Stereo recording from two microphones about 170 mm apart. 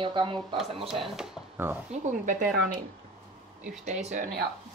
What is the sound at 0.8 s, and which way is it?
Speech, 5° right (ahead or behind).